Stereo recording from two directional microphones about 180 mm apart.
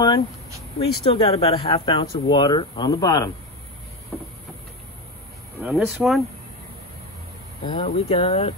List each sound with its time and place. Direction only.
0.7 s speech: 30° left (ahead or behind)
5.6 s speech: 5° right (ahead or behind)
7.6 s speech: 30° left (ahead or behind)